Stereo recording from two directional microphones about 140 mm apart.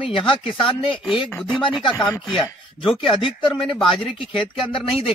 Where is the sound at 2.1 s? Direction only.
30° left (ahead or behind).